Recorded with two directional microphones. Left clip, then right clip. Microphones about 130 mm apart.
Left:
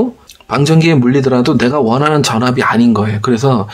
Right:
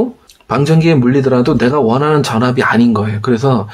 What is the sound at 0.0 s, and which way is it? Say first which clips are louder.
Speech: left 1 dB; 30° left (ahead or behind).